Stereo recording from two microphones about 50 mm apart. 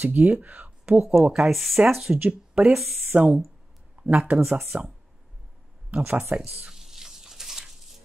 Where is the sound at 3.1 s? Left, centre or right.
Right.